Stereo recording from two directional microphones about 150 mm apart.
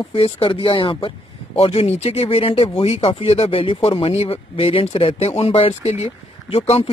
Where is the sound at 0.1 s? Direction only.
35° left (ahead or behind).